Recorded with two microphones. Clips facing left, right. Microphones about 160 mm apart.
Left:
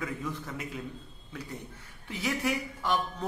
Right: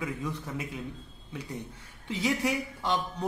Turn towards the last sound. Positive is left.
turn(degrees=-20)  # may be behind; listen again after turning